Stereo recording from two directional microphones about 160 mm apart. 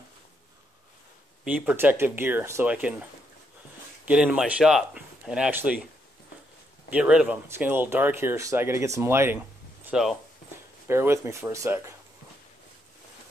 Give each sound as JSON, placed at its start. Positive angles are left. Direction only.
{"t": 1.4, "sound": "speech", "side_deg": -10}
{"t": 6.9, "sound": "speech", "side_deg": -5}
{"t": 9.8, "sound": "speech", "side_deg": -5}
{"t": 10.9, "sound": "speech", "side_deg": -15}